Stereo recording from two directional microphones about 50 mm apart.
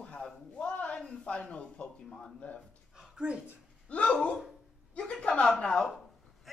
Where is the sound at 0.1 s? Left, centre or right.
Centre.